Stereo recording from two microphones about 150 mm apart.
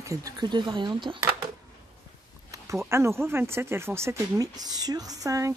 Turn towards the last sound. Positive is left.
turn(degrees=-20)  # may be behind; listen again after turning